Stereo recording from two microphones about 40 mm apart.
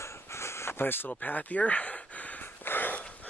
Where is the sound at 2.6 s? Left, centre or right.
Left.